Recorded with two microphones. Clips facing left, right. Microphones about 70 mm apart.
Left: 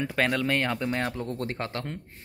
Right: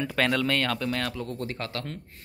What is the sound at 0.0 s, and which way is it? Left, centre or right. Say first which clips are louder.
Speech: right 1 dB; centre.